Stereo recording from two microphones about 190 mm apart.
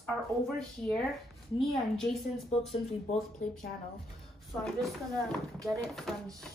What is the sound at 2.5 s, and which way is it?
Speech, 35° left (ahead or behind).